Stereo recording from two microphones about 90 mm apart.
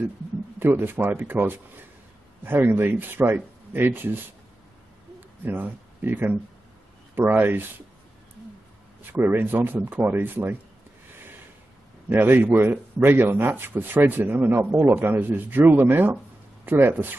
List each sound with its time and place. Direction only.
0.6 s a man's voice: 25° right (ahead or behind)
5.4 s a man's voice: 20° right (ahead or behind)
9.1 s a man's voice: 20° right (ahead or behind)
12.1 s a man's voice: 20° right (ahead or behind)